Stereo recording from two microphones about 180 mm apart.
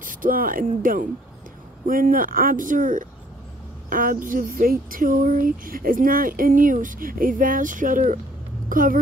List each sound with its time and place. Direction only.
0.0 s speech: 50° right (ahead or behind)